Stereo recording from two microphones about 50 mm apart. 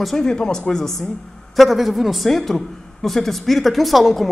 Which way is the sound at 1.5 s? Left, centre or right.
Centre.